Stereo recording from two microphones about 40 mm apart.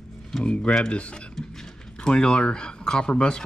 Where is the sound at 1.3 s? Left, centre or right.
Centre.